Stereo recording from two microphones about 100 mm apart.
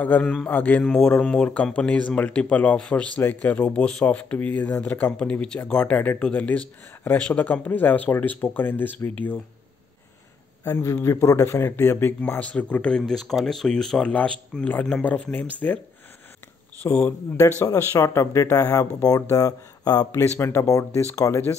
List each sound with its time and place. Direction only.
0.2 s a man's voice: 5° left (ahead or behind)
0.5 s speech: 15° left (ahead or behind)
10.7 s speech: 30° left (ahead or behind)
16.8 s speech: 15° left (ahead or behind); by 20.1 s 40° left (ahead or behind)
20.1 s speech: 25° left (ahead or behind)